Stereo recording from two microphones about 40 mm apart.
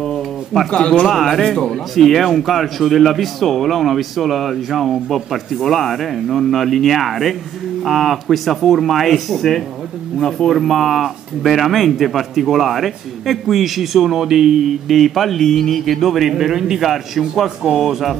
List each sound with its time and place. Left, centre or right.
0.0 s a sound: centre
0.7 s speech: left
1.0 s speech: centre
14.9 s speech: centre